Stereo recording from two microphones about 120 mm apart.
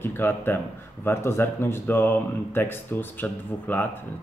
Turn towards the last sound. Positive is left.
turn(degrees=15)  # may be behind; listen again after turning